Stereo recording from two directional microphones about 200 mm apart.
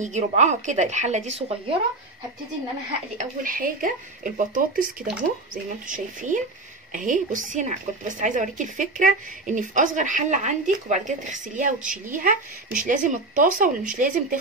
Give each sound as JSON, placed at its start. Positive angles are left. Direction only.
{"t": 0.0, "sound": "a woman's voice", "side_deg": -35}
{"t": 3.2, "sound": "a woman's voice", "side_deg": -45}
{"t": 5.5, "sound": "a woman's voice", "side_deg": -40}